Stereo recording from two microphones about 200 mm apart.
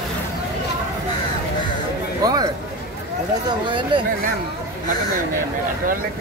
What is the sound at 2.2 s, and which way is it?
Speech, 20° right (ahead or behind).